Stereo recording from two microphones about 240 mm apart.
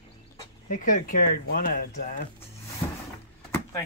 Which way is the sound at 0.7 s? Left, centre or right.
Left.